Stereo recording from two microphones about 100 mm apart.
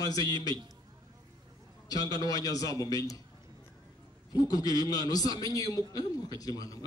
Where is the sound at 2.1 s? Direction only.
40° left (ahead or behind).